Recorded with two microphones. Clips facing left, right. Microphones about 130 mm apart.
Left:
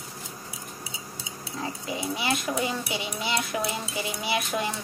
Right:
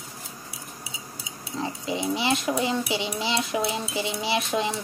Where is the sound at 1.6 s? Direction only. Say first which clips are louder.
Right 4 dB; 25° right (ahead or behind).